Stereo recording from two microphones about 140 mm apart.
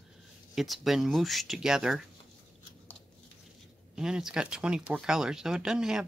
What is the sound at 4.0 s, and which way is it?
Speech, 5° right (ahead or behind).